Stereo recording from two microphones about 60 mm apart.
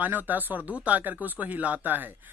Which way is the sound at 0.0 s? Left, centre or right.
Right.